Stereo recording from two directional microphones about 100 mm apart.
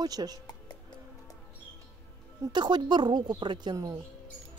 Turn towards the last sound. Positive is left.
turn(degrees=-45)  # may be behind; listen again after turning